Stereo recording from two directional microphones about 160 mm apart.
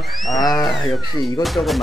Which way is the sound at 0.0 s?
Centre (ahead or behind).